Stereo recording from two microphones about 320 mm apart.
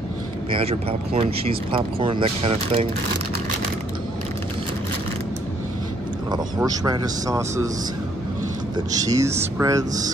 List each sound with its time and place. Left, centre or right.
0.7 s a man's voice: centre
6.3 s a man's voice: centre
8.7 s a man's voice: centre